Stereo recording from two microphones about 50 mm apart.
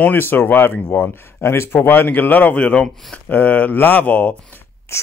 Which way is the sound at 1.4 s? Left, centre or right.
Left.